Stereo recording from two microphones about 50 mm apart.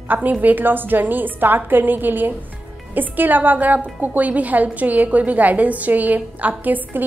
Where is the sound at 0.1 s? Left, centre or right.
Right.